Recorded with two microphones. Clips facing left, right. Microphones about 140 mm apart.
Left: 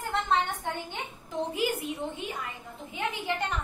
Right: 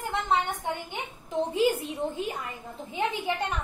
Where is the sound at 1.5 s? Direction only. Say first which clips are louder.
Right 6 dB; 25° right (ahead or behind).